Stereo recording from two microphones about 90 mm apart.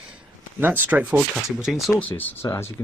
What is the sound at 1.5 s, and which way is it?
Speech, 5° right (ahead or behind).